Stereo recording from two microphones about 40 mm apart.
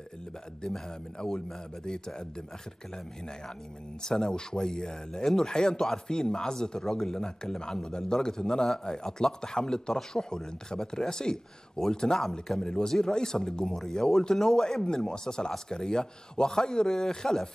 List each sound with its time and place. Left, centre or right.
0.7 s speech: centre
4.0 s a man's voice: centre